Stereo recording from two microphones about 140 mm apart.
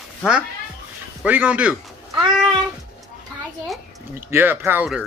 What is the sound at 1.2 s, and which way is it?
Speech, 10° right (ahead or behind).